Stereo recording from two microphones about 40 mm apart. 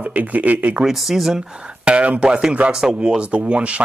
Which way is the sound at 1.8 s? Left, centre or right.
Right.